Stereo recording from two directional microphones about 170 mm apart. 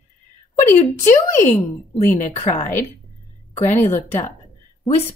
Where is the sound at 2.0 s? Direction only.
45° left (ahead or behind).